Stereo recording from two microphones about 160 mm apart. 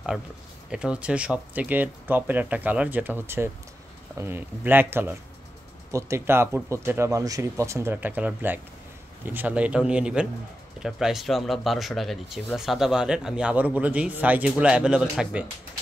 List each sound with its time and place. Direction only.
0.7 s speech: 5° right (ahead or behind)